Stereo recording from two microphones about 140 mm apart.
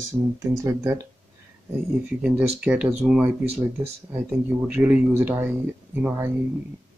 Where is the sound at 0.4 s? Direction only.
20° right (ahead or behind).